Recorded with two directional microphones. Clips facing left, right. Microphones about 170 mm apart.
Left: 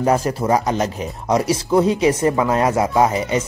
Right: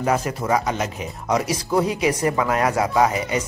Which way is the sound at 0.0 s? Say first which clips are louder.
Left 4 dB; 35° left (ahead or behind).